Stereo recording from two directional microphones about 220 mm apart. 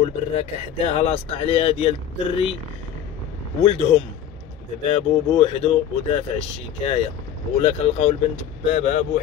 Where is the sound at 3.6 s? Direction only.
25° left (ahead or behind).